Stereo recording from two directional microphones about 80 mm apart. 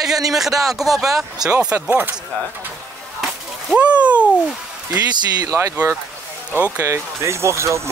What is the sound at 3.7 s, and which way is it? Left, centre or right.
Speech, centre.